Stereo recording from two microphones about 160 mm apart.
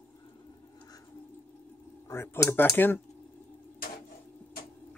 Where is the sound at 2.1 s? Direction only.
15° left (ahead or behind).